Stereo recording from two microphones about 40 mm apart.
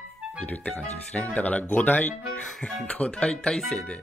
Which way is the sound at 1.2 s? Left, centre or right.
Left.